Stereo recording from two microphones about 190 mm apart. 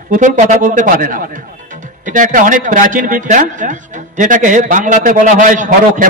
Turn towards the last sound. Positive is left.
turn(degrees=-45)  # may be behind; listen again after turning